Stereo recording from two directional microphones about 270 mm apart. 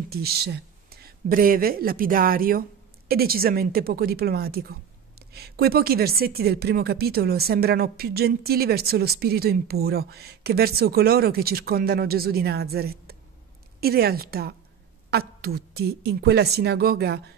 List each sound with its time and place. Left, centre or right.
0.1 s a woman's voice: right